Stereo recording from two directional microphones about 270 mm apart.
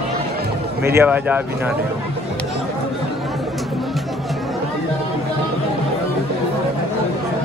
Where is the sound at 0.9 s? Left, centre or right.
Centre.